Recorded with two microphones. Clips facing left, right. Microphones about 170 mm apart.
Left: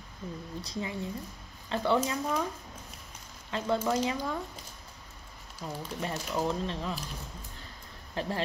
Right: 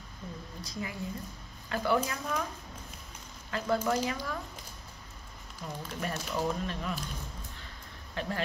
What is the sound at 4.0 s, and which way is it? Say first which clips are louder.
Speech: left 3 dB; 20° left (ahead or behind).